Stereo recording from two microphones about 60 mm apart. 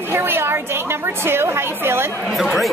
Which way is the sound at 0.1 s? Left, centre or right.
Right.